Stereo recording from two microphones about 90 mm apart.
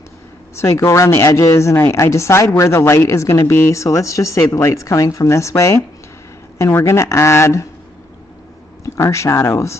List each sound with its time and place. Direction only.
0.6 s speech: 35° left (ahead or behind)
8.8 s speech: 35° left (ahead or behind)